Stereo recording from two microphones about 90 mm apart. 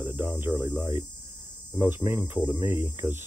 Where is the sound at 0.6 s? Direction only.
25° right (ahead or behind).